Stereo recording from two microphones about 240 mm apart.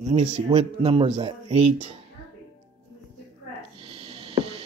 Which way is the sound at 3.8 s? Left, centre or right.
Right.